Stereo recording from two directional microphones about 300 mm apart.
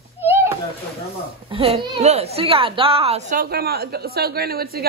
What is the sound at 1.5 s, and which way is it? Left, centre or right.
A woman's voice, centre.